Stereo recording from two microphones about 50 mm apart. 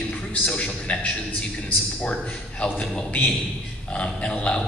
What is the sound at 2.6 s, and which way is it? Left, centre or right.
A man's voice, left.